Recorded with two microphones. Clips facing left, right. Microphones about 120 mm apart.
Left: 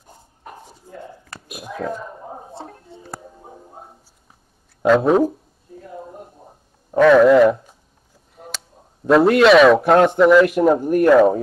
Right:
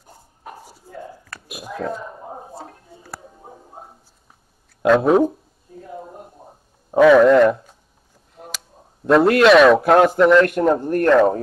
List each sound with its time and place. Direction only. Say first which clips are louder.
1.5 s a sound: even; centre (ahead or behind)
2.9 s music: left 2 dB; 25° left (ahead or behind)
4.8 s a man's voice: even; centre (ahead or behind)
7.0 s a man's voice: even; centre (ahead or behind)
9.0 s a man's voice: left 1 dB; centre (ahead or behind)